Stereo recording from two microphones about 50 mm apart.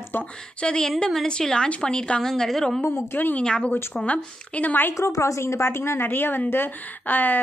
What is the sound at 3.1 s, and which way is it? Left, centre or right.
Speech, left.